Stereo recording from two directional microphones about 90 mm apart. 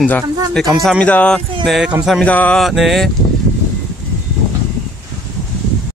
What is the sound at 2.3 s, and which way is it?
Speech, 15° left (ahead or behind).